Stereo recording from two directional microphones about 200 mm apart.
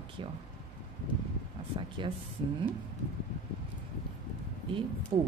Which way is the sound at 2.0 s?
25° right (ahead or behind).